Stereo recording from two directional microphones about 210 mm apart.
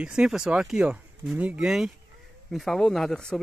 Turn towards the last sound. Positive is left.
turn(degrees=5)  # may be behind; listen again after turning